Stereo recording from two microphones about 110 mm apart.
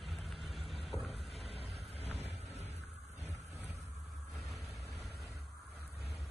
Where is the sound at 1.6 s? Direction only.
65° right (ahead or behind).